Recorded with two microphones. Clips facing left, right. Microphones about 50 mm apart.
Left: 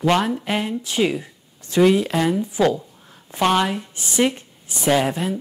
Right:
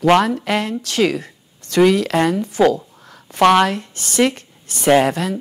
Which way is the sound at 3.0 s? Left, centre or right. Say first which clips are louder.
Right 2 dB; right.